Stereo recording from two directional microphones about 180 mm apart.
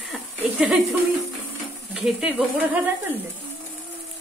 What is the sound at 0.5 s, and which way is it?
Speech, 5° right (ahead or behind).